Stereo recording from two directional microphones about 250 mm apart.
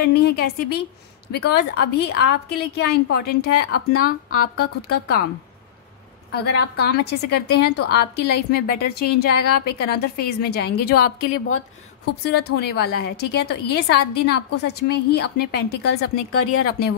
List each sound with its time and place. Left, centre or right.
0.0 s a woman's voice: left
3.9 s speech: left
4.6 s a woman's voice: left
6.3 s a woman's voice: left
11.3 s a woman's voice: left